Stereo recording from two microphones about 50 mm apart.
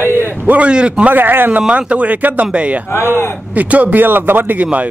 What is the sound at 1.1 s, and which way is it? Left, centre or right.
Speech, right.